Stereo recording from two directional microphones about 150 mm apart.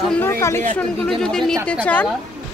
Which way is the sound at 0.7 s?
5° left (ahead or behind).